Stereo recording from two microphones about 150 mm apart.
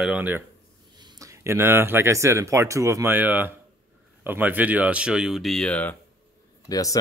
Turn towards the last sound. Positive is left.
turn(degrees=25)  # may be behind; listen again after turning